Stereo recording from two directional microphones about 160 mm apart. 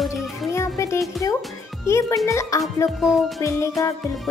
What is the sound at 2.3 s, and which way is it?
A child's voice, 20° left (ahead or behind).